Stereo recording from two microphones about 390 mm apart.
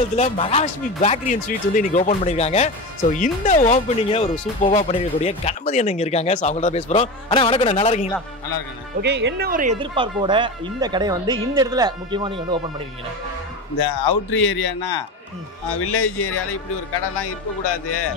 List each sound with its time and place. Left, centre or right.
0.1 s speech: centre
9.0 s speech: right
13.7 s speech: left
15.7 s speech: left